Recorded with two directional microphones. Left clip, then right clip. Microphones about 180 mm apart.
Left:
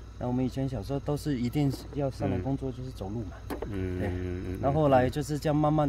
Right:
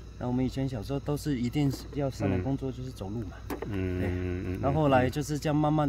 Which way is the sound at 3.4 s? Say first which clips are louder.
Right 1 dB; 15° right (ahead or behind).